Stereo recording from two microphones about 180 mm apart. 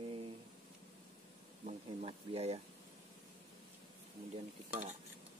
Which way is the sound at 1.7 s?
35° right (ahead or behind).